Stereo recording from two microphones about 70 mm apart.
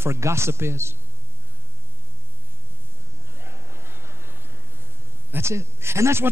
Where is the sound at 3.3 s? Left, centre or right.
Right.